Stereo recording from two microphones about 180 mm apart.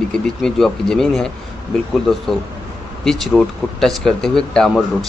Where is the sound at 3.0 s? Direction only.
Centre (ahead or behind).